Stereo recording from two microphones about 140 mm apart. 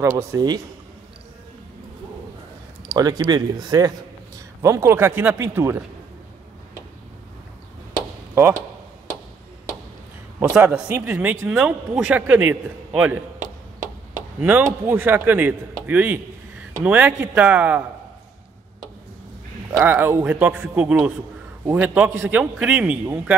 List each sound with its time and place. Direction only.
0.2 s speech: 25° right (ahead or behind)
3.0 s a man's voice: 25° right (ahead or behind)
7.9 s chop: 15° right (ahead or behind)
10.5 s a man's voice: 10° right (ahead or behind)
19.7 s a man's voice: 20° right (ahead or behind)